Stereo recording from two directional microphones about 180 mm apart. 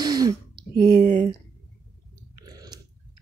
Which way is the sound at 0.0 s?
20° right (ahead or behind).